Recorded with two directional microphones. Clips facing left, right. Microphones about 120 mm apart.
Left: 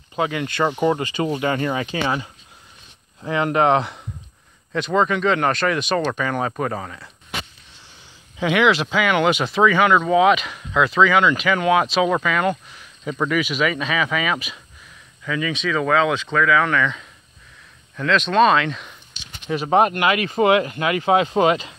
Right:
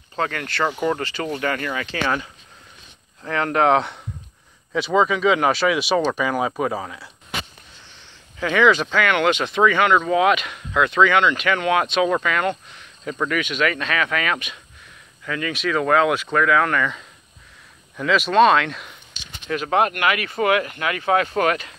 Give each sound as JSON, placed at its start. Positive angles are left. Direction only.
{"t": 0.1, "sound": "speech", "side_deg": 15}
{"t": 8.4, "sound": "speech", "side_deg": 10}
{"t": 19.4, "sound": "speech", "side_deg": 15}
{"t": 19.7, "sound": "speech", "side_deg": 25}